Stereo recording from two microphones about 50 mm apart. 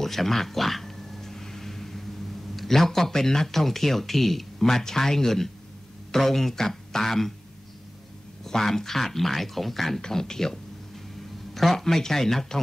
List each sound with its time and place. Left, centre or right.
0.0 s a sound: centre
2.5 s speech: centre
8.5 s speech: centre